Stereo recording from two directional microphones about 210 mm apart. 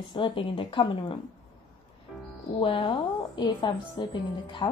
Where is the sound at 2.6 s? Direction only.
25° left (ahead or behind).